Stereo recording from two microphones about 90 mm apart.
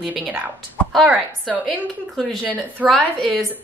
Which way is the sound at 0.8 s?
15° left (ahead or behind).